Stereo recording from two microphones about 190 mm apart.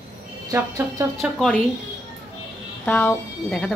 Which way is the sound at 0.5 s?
15° right (ahead or behind).